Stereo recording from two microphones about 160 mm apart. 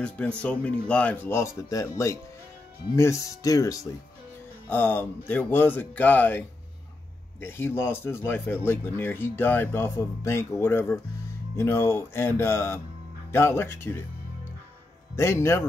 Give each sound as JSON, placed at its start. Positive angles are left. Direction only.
{"t": 0.4, "sound": "speech", "side_deg": 5}
{"t": 15.1, "sound": "speech", "side_deg": 15}